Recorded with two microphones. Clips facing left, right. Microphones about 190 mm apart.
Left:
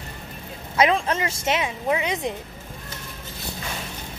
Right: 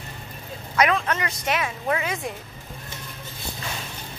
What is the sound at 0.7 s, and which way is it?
Speech, 25° left (ahead or behind).